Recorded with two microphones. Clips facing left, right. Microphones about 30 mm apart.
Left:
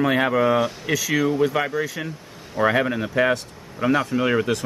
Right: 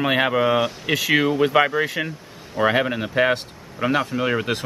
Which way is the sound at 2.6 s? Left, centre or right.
Centre.